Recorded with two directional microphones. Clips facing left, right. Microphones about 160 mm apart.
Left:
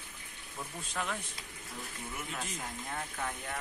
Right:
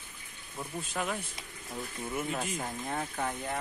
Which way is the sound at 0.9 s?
10° right (ahead or behind).